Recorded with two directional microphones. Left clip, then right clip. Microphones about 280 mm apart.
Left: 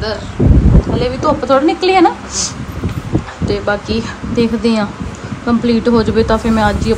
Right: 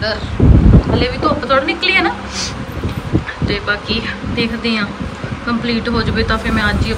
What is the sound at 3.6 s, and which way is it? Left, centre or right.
Speech, centre.